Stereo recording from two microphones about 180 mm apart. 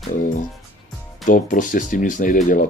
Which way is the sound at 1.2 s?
45° left (ahead or behind).